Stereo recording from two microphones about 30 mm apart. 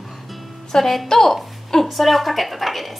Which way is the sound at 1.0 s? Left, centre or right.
Centre.